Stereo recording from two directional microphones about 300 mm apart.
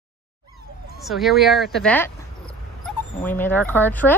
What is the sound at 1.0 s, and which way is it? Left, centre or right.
Speech, centre.